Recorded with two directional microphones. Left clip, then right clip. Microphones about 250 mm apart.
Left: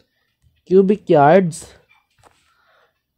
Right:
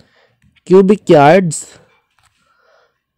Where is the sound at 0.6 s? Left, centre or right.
Right.